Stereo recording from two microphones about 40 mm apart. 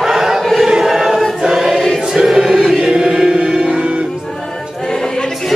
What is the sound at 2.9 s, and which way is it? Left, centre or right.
Music, right.